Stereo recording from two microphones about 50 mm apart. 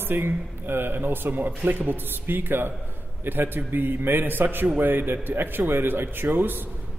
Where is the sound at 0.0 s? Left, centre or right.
Right.